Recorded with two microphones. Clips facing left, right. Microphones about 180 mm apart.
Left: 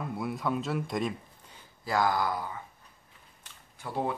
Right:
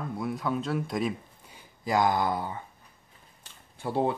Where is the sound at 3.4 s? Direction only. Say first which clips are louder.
Right 7 dB; 30° right (ahead or behind).